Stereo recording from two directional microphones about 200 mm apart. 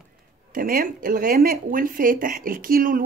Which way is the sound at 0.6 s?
45° right (ahead or behind).